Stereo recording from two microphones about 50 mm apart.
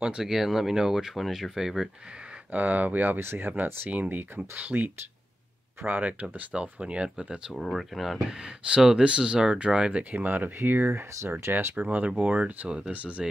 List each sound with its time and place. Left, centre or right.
0.2 s speech: centre
2.5 s speech: right
3.2 s speech: right
5.9 s speech: right
6.2 s speech: right
7.5 s speech: centre
8.3 s speech: centre
10.1 s speech: right
10.9 s speech: right
11.7 s speech: right; by 13.4 s centre